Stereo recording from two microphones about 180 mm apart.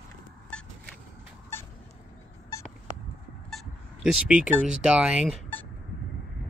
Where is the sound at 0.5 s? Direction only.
5° left (ahead or behind).